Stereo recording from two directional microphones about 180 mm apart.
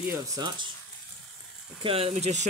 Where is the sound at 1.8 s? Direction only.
30° right (ahead or behind).